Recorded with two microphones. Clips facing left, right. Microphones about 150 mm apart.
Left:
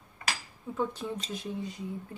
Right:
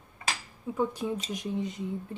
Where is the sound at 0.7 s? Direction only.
10° right (ahead or behind).